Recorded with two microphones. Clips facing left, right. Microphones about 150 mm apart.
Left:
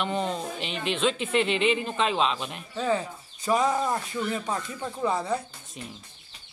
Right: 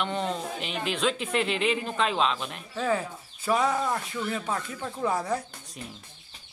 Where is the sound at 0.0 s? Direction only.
Centre (ahead or behind).